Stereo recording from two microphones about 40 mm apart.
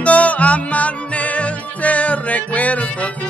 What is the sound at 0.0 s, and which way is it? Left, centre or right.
Music, left.